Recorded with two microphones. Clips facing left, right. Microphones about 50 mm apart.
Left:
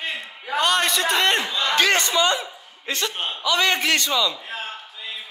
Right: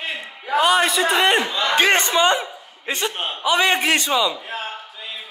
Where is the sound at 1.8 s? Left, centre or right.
Right.